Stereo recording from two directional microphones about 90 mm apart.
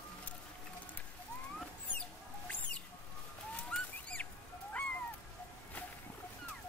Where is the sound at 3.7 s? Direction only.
15° left (ahead or behind).